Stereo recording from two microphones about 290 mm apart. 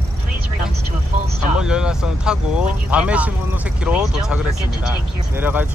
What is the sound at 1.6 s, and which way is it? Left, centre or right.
Speech, centre.